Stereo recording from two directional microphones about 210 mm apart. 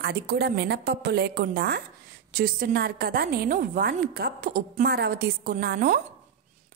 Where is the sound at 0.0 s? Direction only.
50° right (ahead or behind).